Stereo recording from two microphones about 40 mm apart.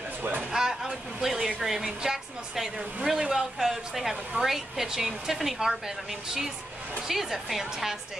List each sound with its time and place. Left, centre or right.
0.5 s a woman's voice: centre
3.3 s a woman's voice: centre
7.1 s a woman's voice: centre